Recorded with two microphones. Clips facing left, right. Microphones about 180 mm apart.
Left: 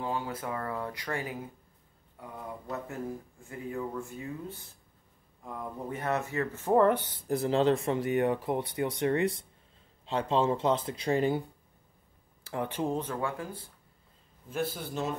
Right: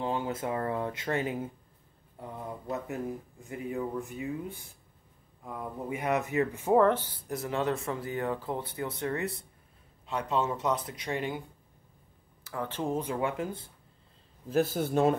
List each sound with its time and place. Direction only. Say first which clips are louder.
0.0 s speech: right 2 dB; 25° right (ahead or behind)
2.7 s speech: right 2 dB; 20° right (ahead or behind)
5.4 s speech: right 1 dB; 5° right (ahead or behind)
7.1 s speech: left 6 dB; 25° left (ahead or behind)
10.0 s speech: left 3 dB; 30° left (ahead or behind)
12.5 s a sound: left 2 dB; 30° left (ahead or behind)
12.8 s speech: right 3 dB; 10° right (ahead or behind)
14.5 s speech: right 7 dB; 45° right (ahead or behind)